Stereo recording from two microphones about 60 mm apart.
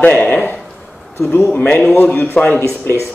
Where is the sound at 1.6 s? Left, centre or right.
Left.